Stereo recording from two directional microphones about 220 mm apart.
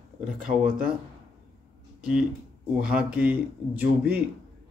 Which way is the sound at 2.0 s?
5° right (ahead or behind).